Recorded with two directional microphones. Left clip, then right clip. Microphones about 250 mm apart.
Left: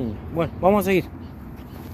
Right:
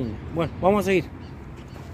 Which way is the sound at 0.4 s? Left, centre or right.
Centre.